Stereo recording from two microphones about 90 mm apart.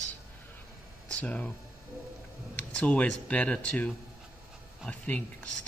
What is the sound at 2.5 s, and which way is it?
A man's voice, 15° left (ahead or behind).